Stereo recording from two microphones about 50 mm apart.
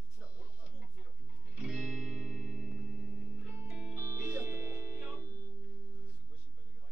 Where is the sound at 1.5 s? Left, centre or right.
Right.